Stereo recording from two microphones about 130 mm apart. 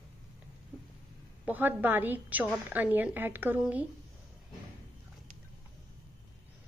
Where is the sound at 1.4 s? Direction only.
15° right (ahead or behind).